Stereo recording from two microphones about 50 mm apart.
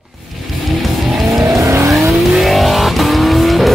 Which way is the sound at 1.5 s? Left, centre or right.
Right.